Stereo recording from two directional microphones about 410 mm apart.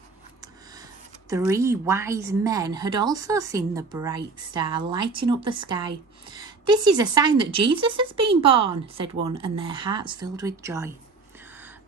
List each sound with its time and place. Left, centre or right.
1.3 s speech: centre